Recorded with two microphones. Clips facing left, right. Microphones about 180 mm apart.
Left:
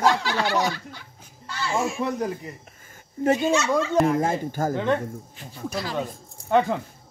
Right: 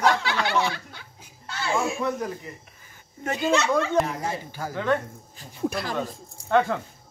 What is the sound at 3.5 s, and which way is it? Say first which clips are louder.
Speech: even; 60° right (ahead or behind).